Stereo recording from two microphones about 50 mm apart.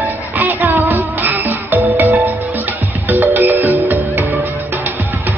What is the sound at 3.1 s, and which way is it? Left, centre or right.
Music, right.